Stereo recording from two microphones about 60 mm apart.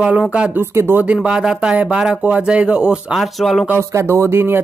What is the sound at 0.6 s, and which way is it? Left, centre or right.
Speech, right.